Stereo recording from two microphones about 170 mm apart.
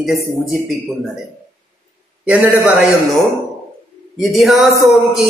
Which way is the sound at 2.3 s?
5° right (ahead or behind).